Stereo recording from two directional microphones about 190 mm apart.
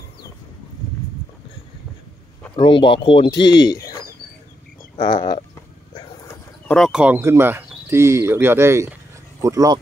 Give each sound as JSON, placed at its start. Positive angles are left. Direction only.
{"t": 2.5, "sound": "speech", "side_deg": 25}
{"t": 5.0, "sound": "speech", "side_deg": 25}
{"t": 6.7, "sound": "speech", "side_deg": 0}